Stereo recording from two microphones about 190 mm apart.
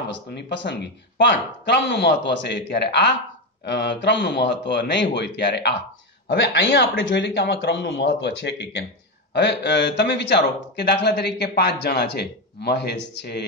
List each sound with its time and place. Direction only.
0.1 s a man's voice: 65° left (ahead or behind)